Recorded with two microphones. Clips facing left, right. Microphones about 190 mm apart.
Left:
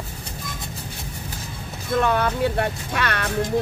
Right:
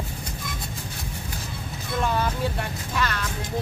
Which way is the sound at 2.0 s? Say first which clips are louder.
Left 4 dB; 65° left (ahead or behind).